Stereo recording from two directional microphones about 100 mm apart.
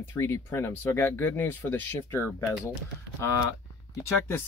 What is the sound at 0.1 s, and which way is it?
Speech, 30° left (ahead or behind).